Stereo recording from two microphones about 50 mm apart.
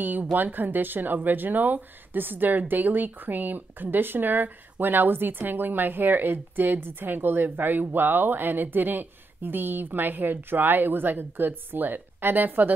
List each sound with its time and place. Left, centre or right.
0.0 s speech: right